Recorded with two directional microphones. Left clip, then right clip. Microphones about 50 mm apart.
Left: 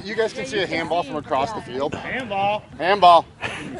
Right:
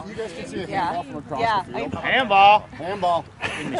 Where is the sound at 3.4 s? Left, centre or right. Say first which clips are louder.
Right 2 dB; centre.